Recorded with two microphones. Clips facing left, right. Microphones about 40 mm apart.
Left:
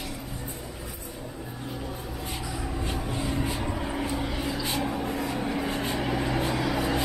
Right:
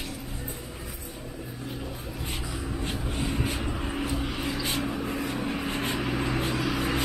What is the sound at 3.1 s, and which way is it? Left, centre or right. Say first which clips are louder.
Vehicle: even; right.